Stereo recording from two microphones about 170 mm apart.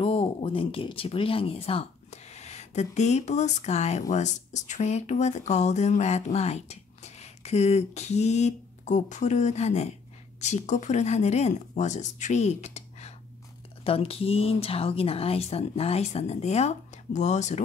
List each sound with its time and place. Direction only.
0.0 s speech: 35° left (ahead or behind)